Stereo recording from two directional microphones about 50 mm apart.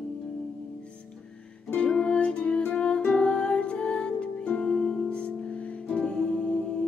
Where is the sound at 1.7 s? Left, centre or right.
Left.